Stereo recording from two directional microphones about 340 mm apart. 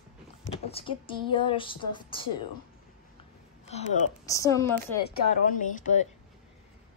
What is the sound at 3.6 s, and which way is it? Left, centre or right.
A woman's voice, centre.